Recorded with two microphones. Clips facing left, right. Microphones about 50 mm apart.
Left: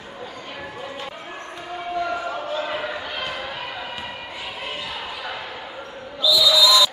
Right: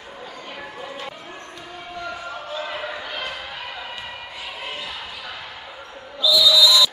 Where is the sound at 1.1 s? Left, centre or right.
Centre.